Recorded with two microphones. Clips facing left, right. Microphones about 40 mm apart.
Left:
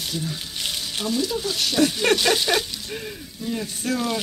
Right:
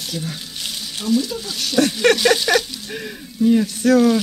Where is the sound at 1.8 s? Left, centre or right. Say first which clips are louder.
Right 5 dB; right.